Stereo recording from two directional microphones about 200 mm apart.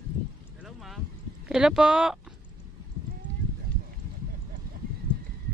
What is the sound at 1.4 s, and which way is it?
Speech, 5° right (ahead or behind).